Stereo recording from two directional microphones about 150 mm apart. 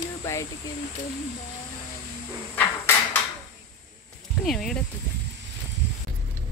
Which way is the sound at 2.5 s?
10° left (ahead or behind).